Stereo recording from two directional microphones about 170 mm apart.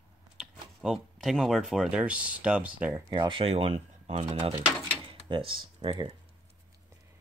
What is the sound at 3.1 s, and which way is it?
Speech, 30° right (ahead or behind).